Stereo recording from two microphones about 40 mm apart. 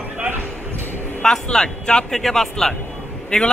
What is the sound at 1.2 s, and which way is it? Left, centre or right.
A man's voice, centre.